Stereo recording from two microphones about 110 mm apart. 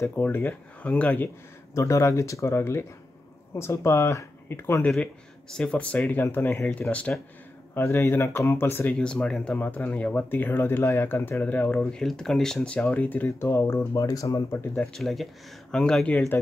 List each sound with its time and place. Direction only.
0.0 s speech: 20° left (ahead or behind)
4.8 s speech: 10° left (ahead or behind)
7.7 s speech: 25° left (ahead or behind)
8.9 s speech: 5° left (ahead or behind)
9.6 s speech: 20° left (ahead or behind)
14.8 s speech: centre (ahead or behind)